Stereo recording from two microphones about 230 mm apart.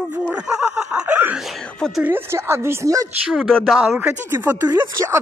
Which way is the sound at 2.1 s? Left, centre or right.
Centre.